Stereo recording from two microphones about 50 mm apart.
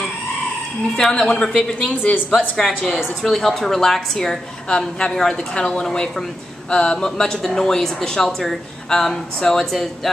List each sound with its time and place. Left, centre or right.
0.9 s speech: centre
2.5 s speech: centre